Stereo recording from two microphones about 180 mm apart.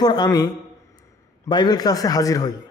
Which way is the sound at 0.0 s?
20° left (ahead or behind).